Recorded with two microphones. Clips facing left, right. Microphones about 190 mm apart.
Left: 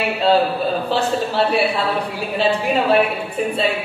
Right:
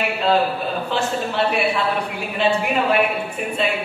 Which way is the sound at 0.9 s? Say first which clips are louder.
Left 2 dB; 35° left (ahead or behind).